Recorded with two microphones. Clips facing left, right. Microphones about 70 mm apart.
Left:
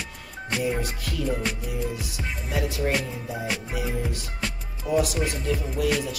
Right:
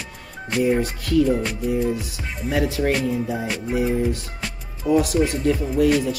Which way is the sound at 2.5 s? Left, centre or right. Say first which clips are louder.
Right 6 dB; right.